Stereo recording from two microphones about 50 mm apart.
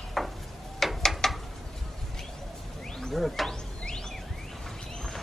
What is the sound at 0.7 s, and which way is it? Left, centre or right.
Ratchet, centre.